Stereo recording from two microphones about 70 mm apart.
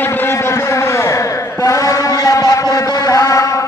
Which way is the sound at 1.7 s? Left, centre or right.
Left.